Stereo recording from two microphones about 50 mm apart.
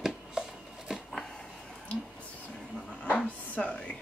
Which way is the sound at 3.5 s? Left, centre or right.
Left.